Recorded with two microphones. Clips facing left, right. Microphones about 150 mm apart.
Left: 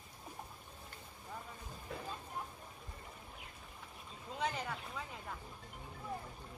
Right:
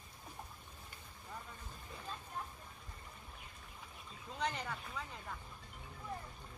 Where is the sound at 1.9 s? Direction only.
90° left.